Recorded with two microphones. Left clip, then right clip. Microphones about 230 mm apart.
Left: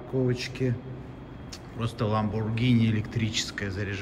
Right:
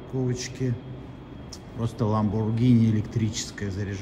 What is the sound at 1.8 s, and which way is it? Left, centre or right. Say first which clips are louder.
Speech: right 1 dB; centre.